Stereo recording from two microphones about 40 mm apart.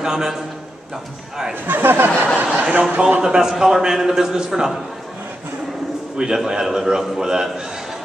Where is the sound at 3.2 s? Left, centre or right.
Centre.